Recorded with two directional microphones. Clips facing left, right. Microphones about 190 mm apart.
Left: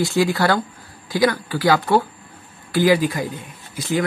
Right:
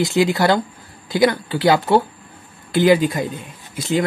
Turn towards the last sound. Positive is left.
turn(degrees=-25)  # may be behind; listen again after turning